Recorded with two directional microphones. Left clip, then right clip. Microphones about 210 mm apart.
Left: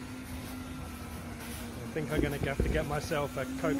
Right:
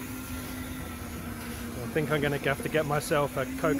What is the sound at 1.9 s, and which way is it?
Speech, 20° right (ahead or behind).